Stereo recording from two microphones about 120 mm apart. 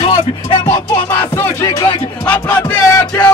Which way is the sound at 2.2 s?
10° left (ahead or behind).